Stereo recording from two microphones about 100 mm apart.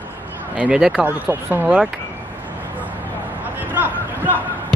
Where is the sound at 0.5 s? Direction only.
10° right (ahead or behind).